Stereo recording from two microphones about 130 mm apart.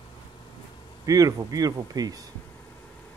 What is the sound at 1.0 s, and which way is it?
Speech, 25° right (ahead or behind).